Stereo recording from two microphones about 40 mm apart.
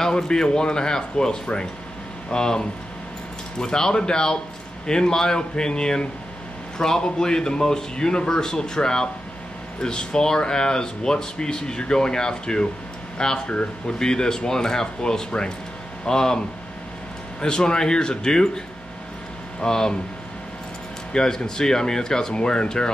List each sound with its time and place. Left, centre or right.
0.0 s a man's voice: centre
19.6 s a man's voice: centre
21.1 s a man's voice: centre